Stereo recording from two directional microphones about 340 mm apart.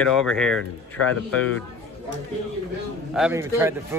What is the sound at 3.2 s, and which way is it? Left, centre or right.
Speech, centre.